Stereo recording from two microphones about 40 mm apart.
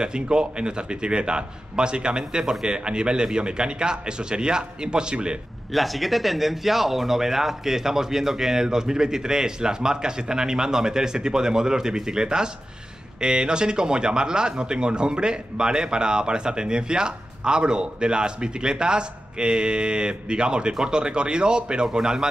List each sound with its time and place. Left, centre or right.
0.0 s speech: right
5.7 s speech: centre